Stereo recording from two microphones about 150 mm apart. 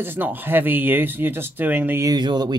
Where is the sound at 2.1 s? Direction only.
30° right (ahead or behind).